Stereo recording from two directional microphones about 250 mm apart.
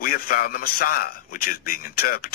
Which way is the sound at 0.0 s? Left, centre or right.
Left.